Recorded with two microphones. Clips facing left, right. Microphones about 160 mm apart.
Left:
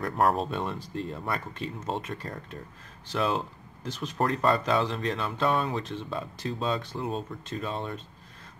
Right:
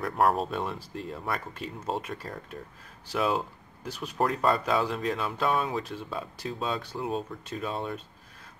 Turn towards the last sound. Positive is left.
turn(degrees=-5)  # may be behind; listen again after turning